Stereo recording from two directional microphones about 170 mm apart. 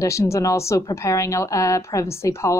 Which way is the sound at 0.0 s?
15° left (ahead or behind).